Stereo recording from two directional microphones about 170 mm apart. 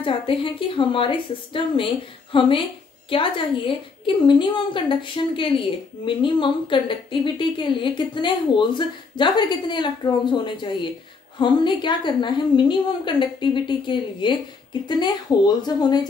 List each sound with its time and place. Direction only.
0.0 s a woman's voice: 30° left (ahead or behind)